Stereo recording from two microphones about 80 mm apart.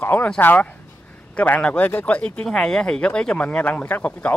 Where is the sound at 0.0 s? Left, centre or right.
Left.